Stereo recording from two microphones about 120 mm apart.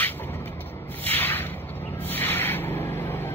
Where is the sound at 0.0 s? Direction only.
15° left (ahead or behind).